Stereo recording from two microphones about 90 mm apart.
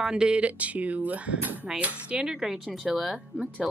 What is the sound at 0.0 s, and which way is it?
A woman's voice, 10° right (ahead or behind).